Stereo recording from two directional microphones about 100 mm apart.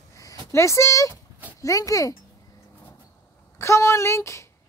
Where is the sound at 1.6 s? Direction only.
35° left (ahead or behind).